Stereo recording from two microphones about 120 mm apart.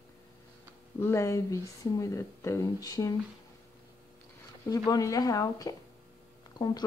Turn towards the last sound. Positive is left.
turn(degrees=35)  # may be behind; listen again after turning